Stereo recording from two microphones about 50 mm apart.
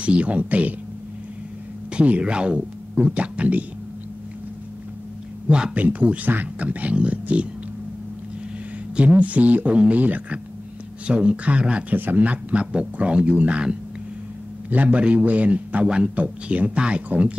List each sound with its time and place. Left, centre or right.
0.0 s a man's voice: right
2.0 s a man's voice: right
5.8 s a man's voice: right
8.9 s a man's voice: right
11.9 s a man's voice: right